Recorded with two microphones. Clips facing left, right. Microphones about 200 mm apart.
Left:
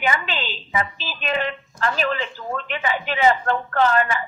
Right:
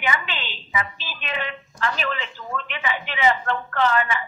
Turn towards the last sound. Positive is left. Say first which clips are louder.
# left 3 dB
turn(degrees=40)  # may be behind; listen again after turning